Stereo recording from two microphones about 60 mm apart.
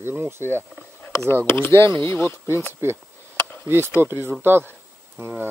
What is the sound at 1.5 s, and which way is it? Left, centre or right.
Speech, left.